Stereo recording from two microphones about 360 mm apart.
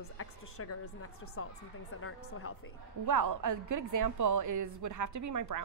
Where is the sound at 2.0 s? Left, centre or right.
Left.